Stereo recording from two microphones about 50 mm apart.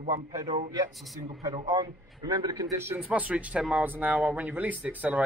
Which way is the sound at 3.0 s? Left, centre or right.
Right.